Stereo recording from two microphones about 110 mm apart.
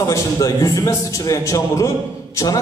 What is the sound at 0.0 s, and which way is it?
A man's voice, 30° left (ahead or behind).